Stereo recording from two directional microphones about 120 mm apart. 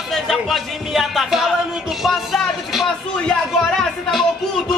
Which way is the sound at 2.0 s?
Centre (ahead or behind).